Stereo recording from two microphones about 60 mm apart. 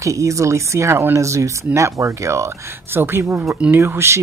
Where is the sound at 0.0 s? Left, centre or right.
Right.